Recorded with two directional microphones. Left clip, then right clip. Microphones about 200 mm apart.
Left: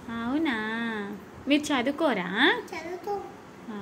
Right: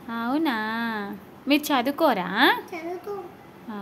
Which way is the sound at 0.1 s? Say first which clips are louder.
Right 3 dB; 20° right (ahead or behind).